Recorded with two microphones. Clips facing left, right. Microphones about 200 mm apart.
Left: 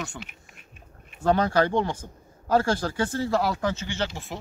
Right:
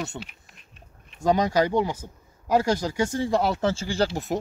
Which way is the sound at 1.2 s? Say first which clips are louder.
Even; 10° right (ahead or behind).